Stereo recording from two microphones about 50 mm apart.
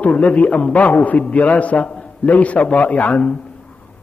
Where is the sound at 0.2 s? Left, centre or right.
Left.